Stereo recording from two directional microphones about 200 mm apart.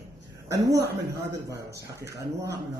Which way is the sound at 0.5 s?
20° right (ahead or behind).